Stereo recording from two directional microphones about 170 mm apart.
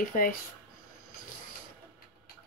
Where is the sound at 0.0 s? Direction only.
55° left (ahead or behind).